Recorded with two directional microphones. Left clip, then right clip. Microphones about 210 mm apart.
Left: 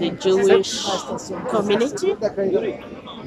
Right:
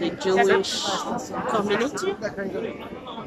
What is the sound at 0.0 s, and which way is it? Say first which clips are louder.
Speech: left 3 dB; 10° left (ahead or behind).